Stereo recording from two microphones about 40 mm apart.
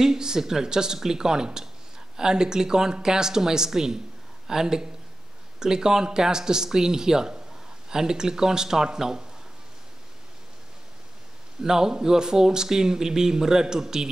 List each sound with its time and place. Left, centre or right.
0.0 s speech: centre
11.6 s speech: centre